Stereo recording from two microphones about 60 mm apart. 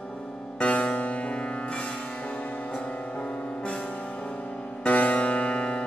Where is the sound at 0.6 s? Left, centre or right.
Left.